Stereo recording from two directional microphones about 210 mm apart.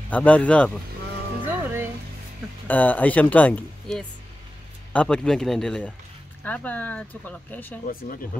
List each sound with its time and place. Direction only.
0.1 s speech: 5° left (ahead or behind)
1.5 s music: 10° right (ahead or behind)
2.7 s speech: 10° left (ahead or behind)
7.8 s speech: 40° left (ahead or behind)